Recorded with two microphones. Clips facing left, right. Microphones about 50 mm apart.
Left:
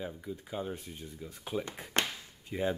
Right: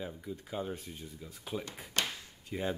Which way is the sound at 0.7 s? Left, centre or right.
Centre.